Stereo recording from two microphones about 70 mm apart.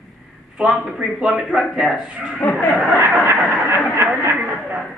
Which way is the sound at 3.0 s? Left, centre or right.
Right.